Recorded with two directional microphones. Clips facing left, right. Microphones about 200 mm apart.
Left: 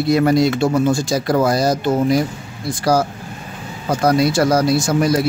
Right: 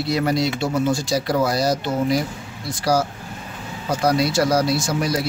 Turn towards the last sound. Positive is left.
turn(degrees=50)  # may be behind; listen again after turning